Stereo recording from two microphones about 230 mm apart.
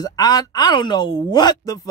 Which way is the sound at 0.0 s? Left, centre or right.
Centre.